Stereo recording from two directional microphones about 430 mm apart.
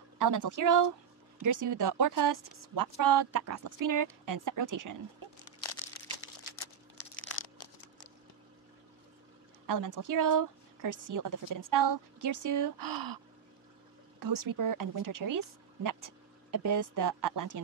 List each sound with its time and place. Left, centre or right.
0.2 s speech: right
9.7 s speech: right
14.2 s speech: right